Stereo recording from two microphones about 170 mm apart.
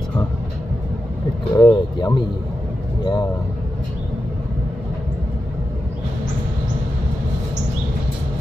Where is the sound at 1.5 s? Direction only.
25° left (ahead or behind).